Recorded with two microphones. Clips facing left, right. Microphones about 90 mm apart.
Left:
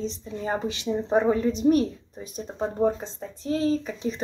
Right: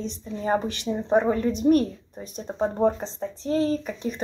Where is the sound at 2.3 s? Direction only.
15° right (ahead or behind).